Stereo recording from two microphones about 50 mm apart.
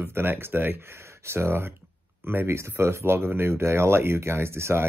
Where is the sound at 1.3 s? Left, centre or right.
Right.